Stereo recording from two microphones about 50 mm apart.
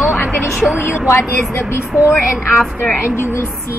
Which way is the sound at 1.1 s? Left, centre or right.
Left.